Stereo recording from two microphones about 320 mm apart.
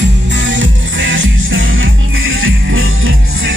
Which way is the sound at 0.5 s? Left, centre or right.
Right.